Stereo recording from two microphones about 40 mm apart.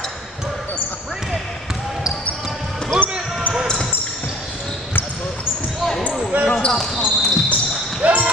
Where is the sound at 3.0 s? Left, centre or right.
Right.